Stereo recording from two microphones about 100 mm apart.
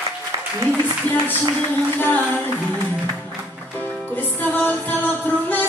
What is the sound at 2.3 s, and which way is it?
Singing, 15° left (ahead or behind).